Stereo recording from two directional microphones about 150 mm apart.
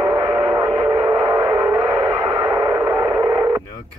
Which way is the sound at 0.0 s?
25° right (ahead or behind).